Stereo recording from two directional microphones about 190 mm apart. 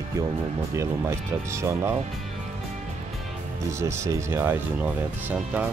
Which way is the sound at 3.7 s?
15° right (ahead or behind).